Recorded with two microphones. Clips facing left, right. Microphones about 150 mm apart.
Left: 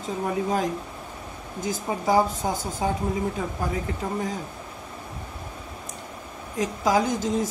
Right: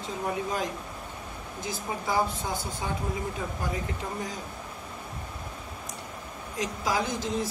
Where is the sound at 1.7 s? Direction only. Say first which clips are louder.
Left 7 dB; 40° left (ahead or behind).